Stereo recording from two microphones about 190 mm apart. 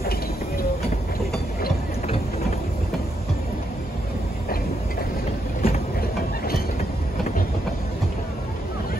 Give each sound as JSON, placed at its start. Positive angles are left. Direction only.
{"t": 5.6, "sound": "train", "side_deg": 50}